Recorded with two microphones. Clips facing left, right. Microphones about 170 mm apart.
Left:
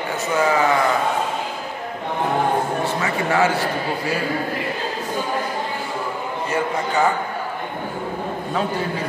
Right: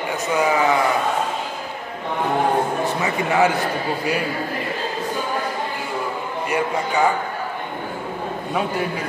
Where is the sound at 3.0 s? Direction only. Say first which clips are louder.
Right 1 dB; 20° right (ahead or behind).